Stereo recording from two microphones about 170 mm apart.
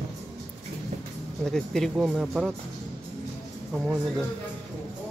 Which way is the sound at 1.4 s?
Centre (ahead or behind).